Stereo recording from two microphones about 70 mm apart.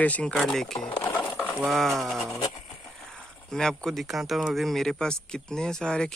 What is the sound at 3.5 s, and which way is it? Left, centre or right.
Speech, centre.